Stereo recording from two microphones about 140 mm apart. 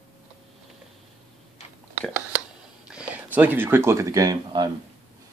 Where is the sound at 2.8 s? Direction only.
5° right (ahead or behind).